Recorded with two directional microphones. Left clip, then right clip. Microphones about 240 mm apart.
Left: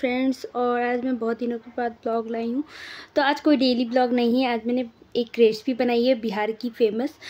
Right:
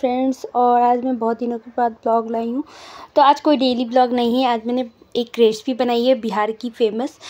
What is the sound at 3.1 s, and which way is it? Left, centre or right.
A woman's voice, centre.